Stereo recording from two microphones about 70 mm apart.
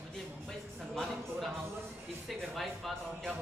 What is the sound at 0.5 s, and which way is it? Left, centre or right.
Speech, centre.